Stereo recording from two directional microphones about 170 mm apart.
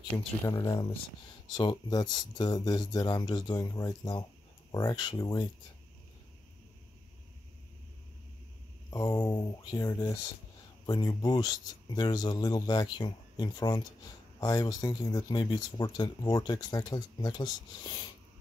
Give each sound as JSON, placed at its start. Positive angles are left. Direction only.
{"t": 0.5, "sound": "speech", "side_deg": 20}
{"t": 8.9, "sound": "speech", "side_deg": 20}